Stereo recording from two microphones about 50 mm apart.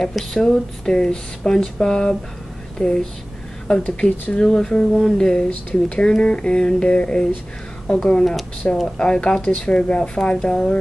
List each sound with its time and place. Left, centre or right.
0.2 s speech: centre
5.5 s speech: left